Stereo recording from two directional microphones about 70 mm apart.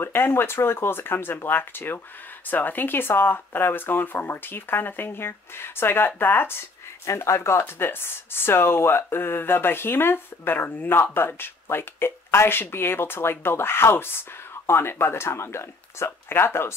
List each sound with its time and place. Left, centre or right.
0.0 s speech: left